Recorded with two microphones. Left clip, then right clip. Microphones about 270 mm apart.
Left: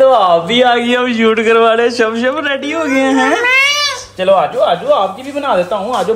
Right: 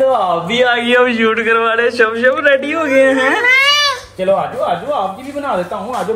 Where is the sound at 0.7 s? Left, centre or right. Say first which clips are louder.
Right 1 dB; centre.